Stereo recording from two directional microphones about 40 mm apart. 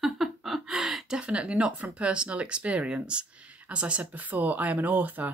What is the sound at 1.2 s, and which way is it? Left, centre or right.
Speech, right.